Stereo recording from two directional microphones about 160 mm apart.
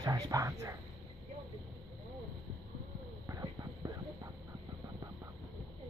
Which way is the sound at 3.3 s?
20° right (ahead or behind).